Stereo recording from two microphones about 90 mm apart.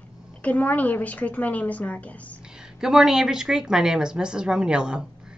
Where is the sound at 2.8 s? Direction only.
5° right (ahead or behind).